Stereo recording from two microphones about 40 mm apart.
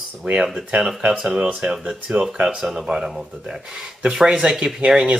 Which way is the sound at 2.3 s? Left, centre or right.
Centre.